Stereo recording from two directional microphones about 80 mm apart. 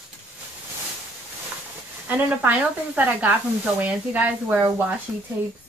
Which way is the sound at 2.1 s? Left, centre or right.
Right.